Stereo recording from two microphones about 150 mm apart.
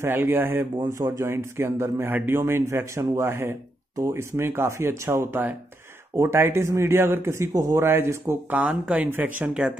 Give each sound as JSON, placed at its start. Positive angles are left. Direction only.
{"t": 0.0, "sound": "speech", "side_deg": -15}